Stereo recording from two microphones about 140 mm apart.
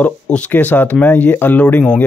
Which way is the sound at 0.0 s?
10° left (ahead or behind).